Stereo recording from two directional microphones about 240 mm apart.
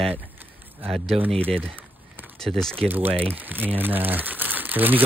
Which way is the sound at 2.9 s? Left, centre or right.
Centre.